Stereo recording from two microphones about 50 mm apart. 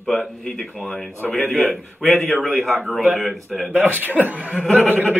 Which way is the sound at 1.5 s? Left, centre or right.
Right.